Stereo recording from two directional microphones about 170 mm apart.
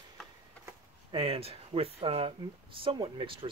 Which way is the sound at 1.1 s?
35° right (ahead or behind).